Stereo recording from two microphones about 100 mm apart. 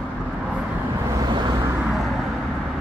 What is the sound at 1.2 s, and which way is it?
Vehicle, 45° right (ahead or behind).